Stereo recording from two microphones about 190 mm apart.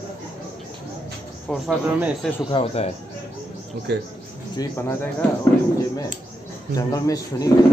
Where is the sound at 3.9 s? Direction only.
60° right (ahead or behind).